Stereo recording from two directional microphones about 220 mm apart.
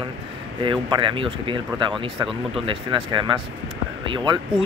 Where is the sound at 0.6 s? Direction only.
20° right (ahead or behind).